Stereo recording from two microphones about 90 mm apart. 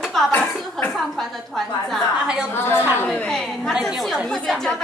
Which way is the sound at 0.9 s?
Centre (ahead or behind).